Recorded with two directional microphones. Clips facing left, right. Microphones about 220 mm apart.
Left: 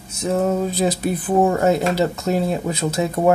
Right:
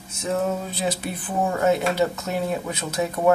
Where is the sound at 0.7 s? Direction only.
40° left (ahead or behind).